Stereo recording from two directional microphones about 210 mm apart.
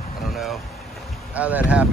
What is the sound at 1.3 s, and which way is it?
Speech, 5° right (ahead or behind).